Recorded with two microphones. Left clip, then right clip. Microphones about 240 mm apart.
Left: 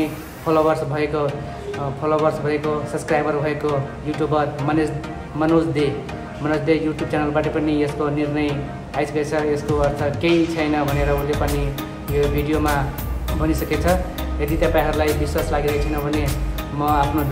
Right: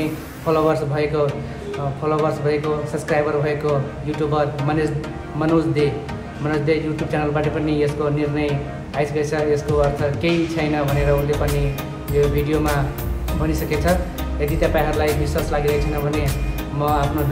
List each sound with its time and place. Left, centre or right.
0.5 s speech: centre
12.2 s speech: centre
12.5 s speech: centre